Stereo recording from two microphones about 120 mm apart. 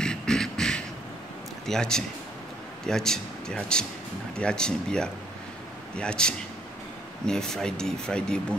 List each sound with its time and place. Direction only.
0.0 s beatboxing: 5° left (ahead or behind)
1.7 s speech: 5° left (ahead or behind)